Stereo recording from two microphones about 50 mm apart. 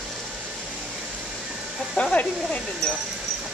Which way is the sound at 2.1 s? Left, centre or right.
Left.